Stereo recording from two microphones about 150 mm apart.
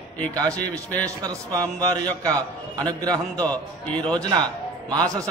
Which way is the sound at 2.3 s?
10° left (ahead or behind).